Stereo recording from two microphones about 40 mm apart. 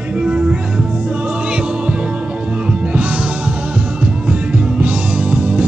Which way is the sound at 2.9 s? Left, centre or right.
Right.